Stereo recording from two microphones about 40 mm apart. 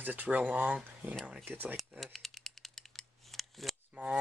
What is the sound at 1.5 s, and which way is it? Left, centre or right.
Speech, right.